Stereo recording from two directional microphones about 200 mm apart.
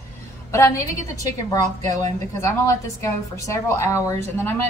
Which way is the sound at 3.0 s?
15° left (ahead or behind).